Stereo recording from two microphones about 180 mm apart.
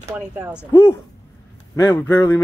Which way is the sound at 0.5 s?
15° left (ahead or behind).